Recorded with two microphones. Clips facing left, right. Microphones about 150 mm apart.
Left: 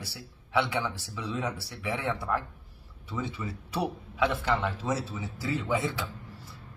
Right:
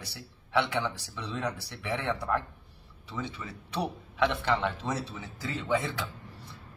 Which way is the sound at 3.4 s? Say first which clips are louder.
Left 2 dB; 15° left (ahead or behind).